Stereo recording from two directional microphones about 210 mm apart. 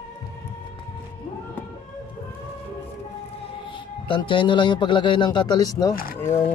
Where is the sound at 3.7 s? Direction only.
25° left (ahead or behind).